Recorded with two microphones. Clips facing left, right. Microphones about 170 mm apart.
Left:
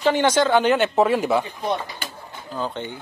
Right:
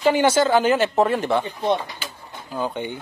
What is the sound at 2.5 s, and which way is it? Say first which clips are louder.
Speech: right 2 dB; 10° right (ahead or behind).